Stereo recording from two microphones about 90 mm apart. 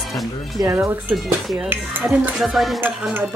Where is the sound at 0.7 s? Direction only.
25° right (ahead or behind).